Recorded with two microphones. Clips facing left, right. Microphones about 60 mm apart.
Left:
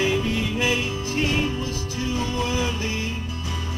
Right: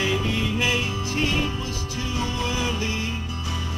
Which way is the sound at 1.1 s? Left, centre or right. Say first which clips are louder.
Left 2 dB; left.